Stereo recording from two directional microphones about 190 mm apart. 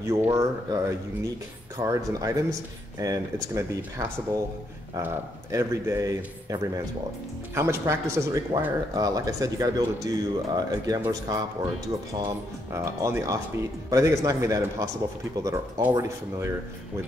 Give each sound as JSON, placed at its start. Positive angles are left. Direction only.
{"t": 0.0, "sound": "speech", "side_deg": -15}
{"t": 4.9, "sound": "speech", "side_deg": -15}